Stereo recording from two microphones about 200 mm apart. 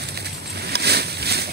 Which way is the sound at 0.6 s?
55° right (ahead or behind).